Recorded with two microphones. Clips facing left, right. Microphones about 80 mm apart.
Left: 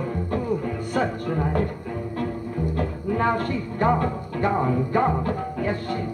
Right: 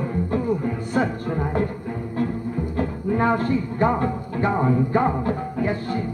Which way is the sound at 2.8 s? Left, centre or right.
Right.